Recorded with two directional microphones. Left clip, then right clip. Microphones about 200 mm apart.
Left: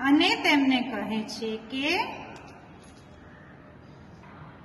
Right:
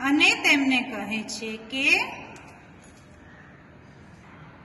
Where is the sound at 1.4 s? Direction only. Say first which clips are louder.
Right 3 dB; 20° left (ahead or behind).